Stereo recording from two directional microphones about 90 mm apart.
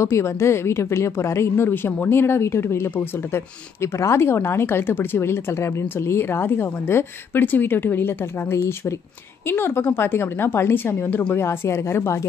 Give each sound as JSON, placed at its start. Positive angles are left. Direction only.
{"t": 0.0, "sound": "a woman's voice", "side_deg": 30}